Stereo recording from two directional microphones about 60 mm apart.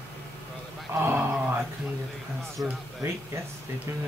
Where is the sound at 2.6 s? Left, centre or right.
Right.